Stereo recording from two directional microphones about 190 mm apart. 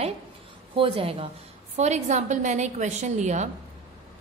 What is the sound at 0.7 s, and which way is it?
A woman's voice, 30° right (ahead or behind).